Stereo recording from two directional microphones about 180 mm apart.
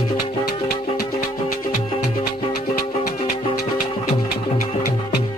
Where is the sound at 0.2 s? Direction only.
55° left (ahead or behind).